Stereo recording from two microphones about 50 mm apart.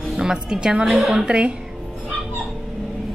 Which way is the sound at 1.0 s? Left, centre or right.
Centre.